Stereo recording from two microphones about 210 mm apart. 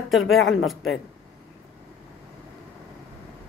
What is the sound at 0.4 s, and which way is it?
Speech, 70° left (ahead or behind).